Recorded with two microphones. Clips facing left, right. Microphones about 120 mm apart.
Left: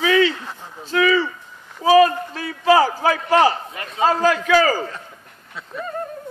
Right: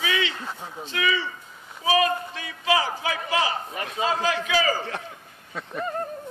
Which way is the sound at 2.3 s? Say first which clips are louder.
Left 12 dB; 40° left (ahead or behind).